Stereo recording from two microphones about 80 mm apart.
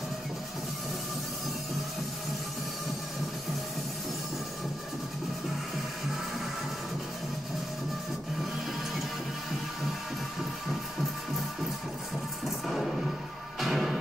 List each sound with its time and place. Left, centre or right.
12.4 s music: centre